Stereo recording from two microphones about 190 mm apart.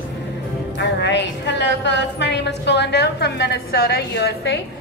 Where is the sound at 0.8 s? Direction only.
65° left (ahead or behind).